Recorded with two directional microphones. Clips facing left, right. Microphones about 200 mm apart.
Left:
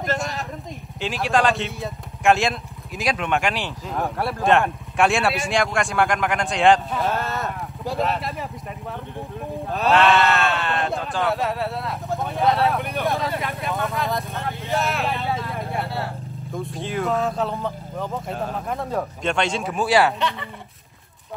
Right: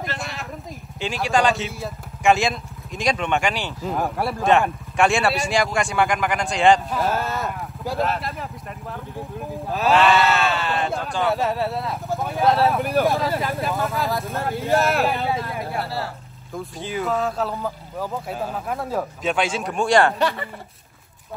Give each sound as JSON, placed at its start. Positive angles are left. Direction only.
{"t": 0.0, "sound": "vehicle", "side_deg": 45}
{"t": 1.0, "sound": "speech", "side_deg": 0}
{"t": 9.7, "sound": "sheep", "side_deg": 0}
{"t": 16.5, "sound": "speech", "side_deg": 0}